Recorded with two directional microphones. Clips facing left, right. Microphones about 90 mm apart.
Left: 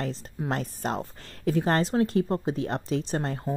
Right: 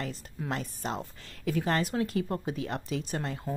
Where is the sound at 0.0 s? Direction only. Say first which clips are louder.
Left 5 dB; 30° left (ahead or behind).